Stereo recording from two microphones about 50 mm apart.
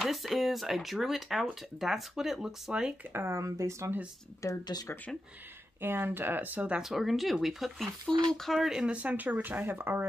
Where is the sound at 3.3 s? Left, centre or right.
Right.